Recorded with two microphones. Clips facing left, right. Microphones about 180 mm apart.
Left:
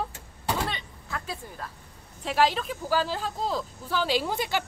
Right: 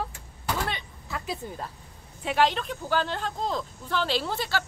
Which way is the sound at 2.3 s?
5° left (ahead or behind).